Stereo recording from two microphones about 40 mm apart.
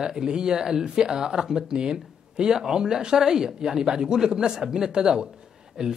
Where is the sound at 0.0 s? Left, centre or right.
Centre.